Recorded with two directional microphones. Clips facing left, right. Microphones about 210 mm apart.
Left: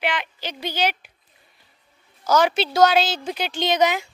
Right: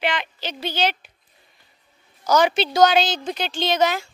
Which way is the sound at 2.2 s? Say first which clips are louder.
Right 1 dB; 5° left (ahead or behind).